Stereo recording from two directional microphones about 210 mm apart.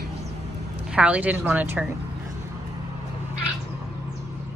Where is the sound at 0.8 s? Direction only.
5° right (ahead or behind).